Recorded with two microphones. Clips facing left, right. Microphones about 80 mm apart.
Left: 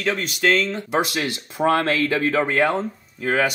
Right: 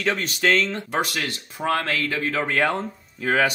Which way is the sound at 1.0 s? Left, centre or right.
Centre.